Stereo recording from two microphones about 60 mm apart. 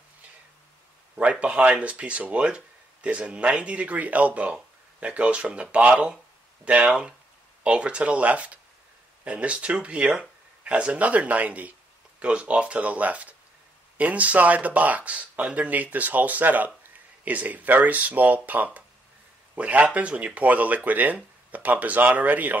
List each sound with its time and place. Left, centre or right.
1.1 s speech: right